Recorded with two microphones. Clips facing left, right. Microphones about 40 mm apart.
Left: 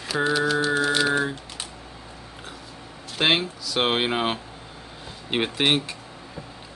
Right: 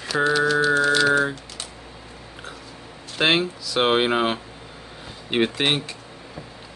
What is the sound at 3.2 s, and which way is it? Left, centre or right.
Speech, centre.